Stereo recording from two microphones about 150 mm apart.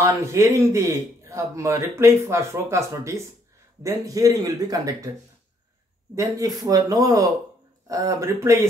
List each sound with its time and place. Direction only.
0.0 s a man's voice: 20° right (ahead or behind)
6.1 s a man's voice: 25° right (ahead or behind)